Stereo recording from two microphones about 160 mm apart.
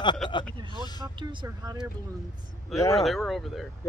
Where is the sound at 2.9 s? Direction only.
Centre (ahead or behind).